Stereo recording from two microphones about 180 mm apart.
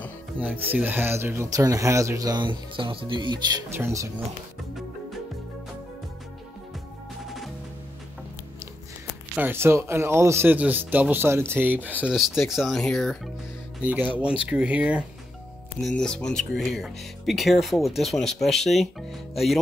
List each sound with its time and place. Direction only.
0.4 s speech: 10° right (ahead or behind); by 3.6 s 25° right (ahead or behind)
3.7 s speech: 15° right (ahead or behind)
7.2 s music: centre (ahead or behind)
9.3 s speech: 10° right (ahead or behind)
14.5 s speech: 5° right (ahead or behind)
15.8 s speech: 5° left (ahead or behind)